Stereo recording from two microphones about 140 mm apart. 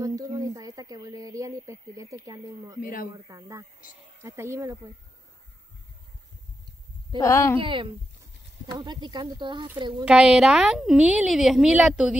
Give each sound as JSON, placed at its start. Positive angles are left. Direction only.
{"t": 0.0, "sound": "a sound", "side_deg": -25}
{"t": 2.8, "sound": "speech", "side_deg": 85}
{"t": 3.3, "sound": "speech", "side_deg": -20}
{"t": 7.2, "sound": "a woman's voice", "side_deg": 20}
{"t": 7.6, "sound": "speech", "side_deg": -35}
{"t": 10.0, "sound": "a woman's voice", "side_deg": -5}